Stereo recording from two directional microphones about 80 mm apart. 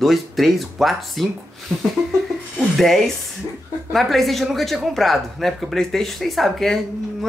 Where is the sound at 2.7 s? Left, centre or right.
Centre.